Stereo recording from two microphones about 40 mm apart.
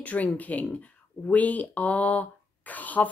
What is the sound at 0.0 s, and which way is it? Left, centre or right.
Speech, left.